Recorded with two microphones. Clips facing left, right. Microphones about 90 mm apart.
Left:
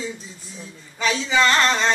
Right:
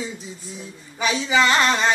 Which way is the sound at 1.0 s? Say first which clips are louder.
Even; 15° right (ahead or behind).